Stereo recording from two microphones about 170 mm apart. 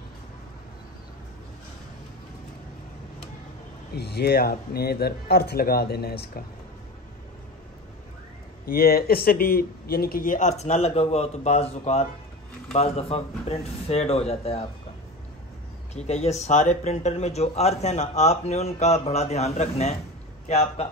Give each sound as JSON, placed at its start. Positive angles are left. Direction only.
{"t": 3.9, "sound": "speech", "side_deg": 70}
{"t": 8.6, "sound": "speech", "side_deg": 60}
{"t": 10.6, "sound": "speech", "side_deg": 35}
{"t": 15.9, "sound": "speech", "side_deg": 40}